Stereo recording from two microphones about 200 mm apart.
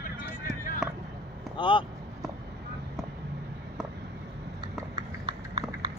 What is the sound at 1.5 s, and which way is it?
Vehicle, 25° left (ahead or behind).